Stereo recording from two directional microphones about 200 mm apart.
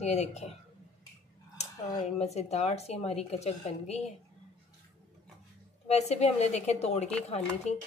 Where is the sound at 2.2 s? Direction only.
35° left (ahead or behind).